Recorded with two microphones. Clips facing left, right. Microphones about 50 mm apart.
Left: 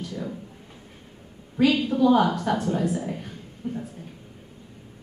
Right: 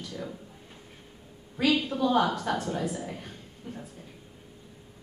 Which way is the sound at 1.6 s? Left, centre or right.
Centre.